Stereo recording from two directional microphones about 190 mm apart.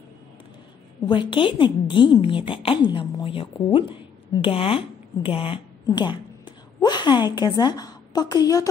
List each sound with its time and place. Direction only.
1.0 s a woman's voice: 25° left (ahead or behind)